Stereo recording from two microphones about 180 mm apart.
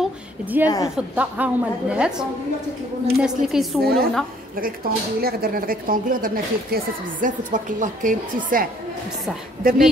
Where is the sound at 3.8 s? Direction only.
60° right (ahead or behind).